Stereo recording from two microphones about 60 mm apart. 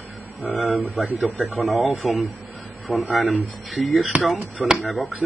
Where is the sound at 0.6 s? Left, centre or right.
Right.